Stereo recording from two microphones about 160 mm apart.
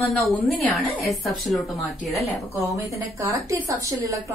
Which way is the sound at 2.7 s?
20° right (ahead or behind).